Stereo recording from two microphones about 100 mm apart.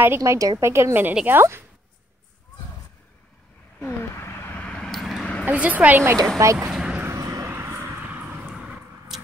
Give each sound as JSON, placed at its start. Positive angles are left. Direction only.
{"t": 0.2, "sound": "a woman's voice", "side_deg": -35}
{"t": 3.8, "sound": "vehicle", "side_deg": 25}
{"t": 4.6, "sound": "vehicle", "side_deg": 10}
{"t": 5.4, "sound": "a woman's voice", "side_deg": -15}
{"t": 6.3, "sound": "speech", "side_deg": -30}
{"t": 6.7, "sound": "vehicle", "side_deg": -10}
{"t": 7.1, "sound": "vehicle", "side_deg": -30}